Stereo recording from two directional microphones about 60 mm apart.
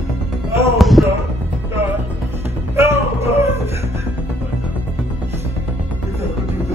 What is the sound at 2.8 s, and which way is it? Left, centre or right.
Music, right.